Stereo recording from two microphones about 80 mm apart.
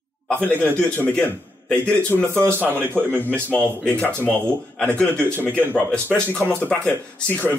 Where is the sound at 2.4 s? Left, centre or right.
Right.